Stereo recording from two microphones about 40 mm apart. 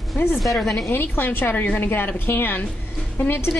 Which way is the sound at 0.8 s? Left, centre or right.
Left.